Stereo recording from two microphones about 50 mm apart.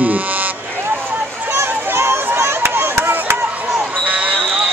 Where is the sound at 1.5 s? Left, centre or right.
Right.